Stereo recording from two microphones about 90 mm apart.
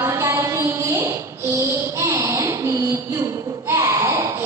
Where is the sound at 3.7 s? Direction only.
35° right (ahead or behind).